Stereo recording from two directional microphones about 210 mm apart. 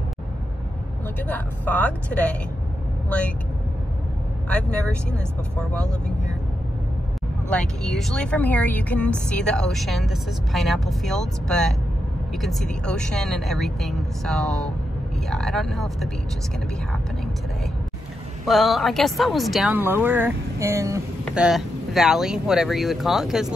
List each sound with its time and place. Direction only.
1.2 s speech: 10° left (ahead or behind)
4.5 s a woman's voice: 5° left (ahead or behind)
7.4 s a woman's voice: 5° left (ahead or behind)
18.4 s a woman's voice: centre (ahead or behind)
21.5 s a woman's voice: centre (ahead or behind)